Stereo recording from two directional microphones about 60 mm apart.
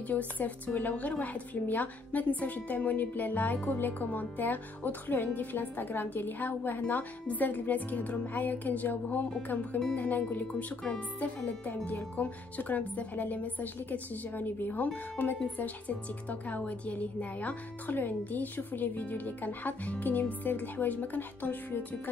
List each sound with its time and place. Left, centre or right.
0.1 s speech: left